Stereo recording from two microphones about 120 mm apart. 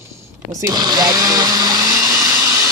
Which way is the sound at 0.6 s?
30° right (ahead or behind).